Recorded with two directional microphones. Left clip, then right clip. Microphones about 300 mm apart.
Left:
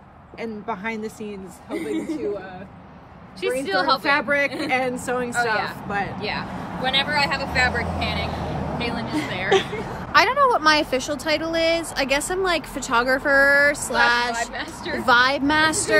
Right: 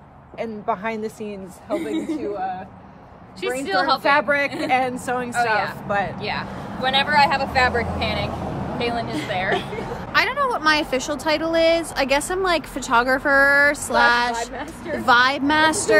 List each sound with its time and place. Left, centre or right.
0.4 s speech: centre
3.4 s speech: centre; by 8.3 s right
8.7 s speech: centre
9.6 s speech: centre
14.3 s speech: centre
15.0 s speech: centre